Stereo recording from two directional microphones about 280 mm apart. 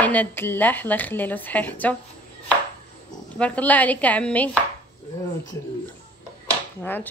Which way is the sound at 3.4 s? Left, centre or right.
Centre.